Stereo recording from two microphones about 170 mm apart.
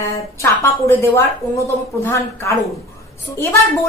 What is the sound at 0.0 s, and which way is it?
A woman's voice, 15° left (ahead or behind).